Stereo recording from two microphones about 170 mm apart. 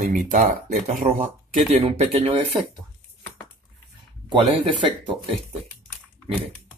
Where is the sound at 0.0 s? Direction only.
50° right (ahead or behind).